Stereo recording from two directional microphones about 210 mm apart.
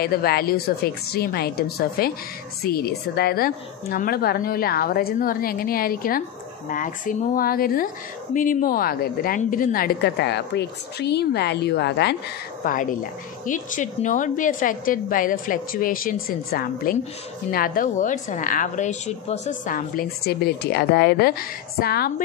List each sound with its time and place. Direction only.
0.0 s a woman's voice: 45° left (ahead or behind)
12.6 s a woman's voice: 40° left (ahead or behind)